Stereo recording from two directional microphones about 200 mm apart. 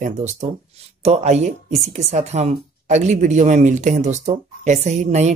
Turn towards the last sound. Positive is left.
turn(degrees=-35)  # may be behind; listen again after turning